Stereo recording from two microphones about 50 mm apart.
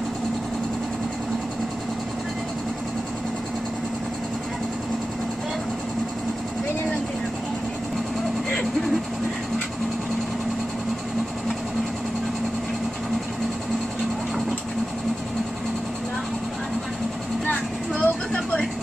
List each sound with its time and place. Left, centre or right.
17.5 s vehicle: left